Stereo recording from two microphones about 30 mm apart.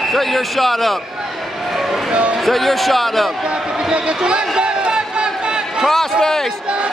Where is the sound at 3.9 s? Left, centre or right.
Right.